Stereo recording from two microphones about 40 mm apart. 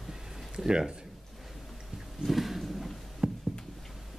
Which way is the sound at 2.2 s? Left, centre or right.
Centre.